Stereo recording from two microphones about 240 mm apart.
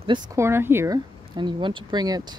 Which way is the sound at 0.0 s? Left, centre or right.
Centre.